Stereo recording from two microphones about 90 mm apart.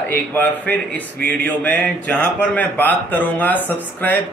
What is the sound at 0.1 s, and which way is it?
A man's voice, 20° left (ahead or behind).